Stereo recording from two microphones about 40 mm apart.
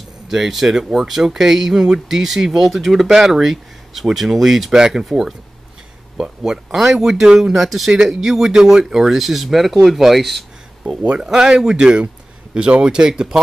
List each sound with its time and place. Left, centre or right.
0.3 s speech: centre
3.1 s speech: centre
6.1 s speech: centre
11.2 s speech: centre